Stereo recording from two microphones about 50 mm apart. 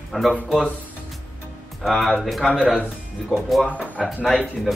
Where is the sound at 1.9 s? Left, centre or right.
Centre.